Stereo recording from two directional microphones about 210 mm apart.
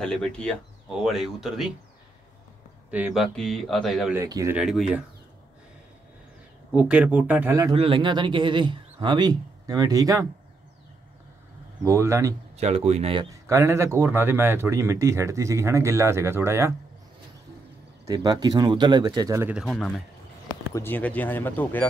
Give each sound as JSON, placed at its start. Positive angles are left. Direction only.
{"t": 0.0, "sound": "speech", "side_deg": 5}
{"t": 2.9, "sound": "speech", "side_deg": -5}
{"t": 4.1, "sound": "speech", "side_deg": -15}
{"t": 4.6, "sound": "speech", "side_deg": -5}
{"t": 6.7, "sound": "speech", "side_deg": -5}
{"t": 7.7, "sound": "speech", "side_deg": -25}
{"t": 11.8, "sound": "speech", "side_deg": -10}
{"t": 12.5, "sound": "speech", "side_deg": -30}
{"t": 18.0, "sound": "speech", "side_deg": -20}